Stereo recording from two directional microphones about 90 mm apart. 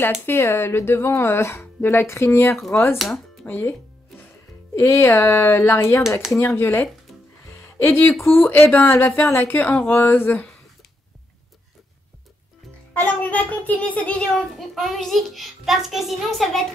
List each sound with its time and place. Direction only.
0.3 s speech: 30° left (ahead or behind)
4.7 s speech: 30° left (ahead or behind)
12.9 s a child's voice: 20° left (ahead or behind)
14.6 s a child's voice: centre (ahead or behind)